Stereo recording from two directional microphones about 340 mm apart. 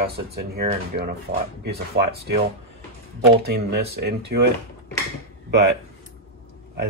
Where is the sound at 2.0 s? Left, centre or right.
Right.